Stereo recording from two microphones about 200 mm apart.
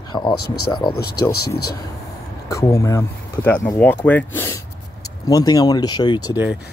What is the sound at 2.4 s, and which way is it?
Speech, 15° left (ahead or behind).